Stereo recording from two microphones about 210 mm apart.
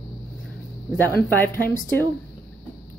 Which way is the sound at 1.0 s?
10° left (ahead or behind).